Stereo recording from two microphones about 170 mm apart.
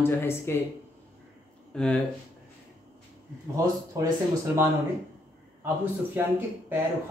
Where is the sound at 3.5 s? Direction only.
20° right (ahead or behind).